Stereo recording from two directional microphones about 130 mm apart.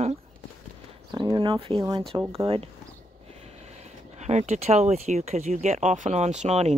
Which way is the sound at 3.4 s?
55° right (ahead or behind).